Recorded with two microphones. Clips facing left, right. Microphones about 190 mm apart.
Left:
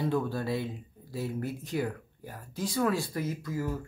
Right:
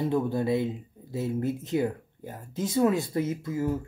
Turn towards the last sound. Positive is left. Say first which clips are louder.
# right 5 dB
turn(degrees=-20)  # may be behind; listen again after turning